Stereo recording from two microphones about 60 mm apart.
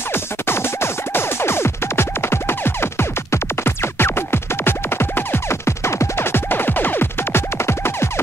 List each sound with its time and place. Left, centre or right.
0.1 s music: left